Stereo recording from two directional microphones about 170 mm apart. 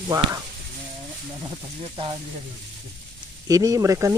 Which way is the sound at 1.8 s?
30° right (ahead or behind).